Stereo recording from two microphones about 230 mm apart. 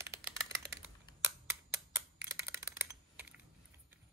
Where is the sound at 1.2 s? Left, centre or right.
Centre.